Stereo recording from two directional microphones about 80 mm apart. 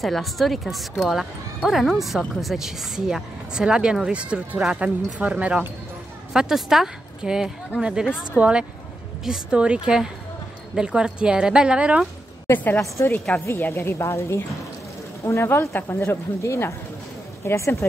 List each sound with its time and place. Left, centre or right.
0.0 s speech: centre
6.3 s speech: centre
12.4 s a woman's voice: left